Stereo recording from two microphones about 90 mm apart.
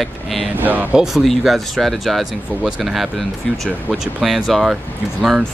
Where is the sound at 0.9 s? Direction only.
5° right (ahead or behind).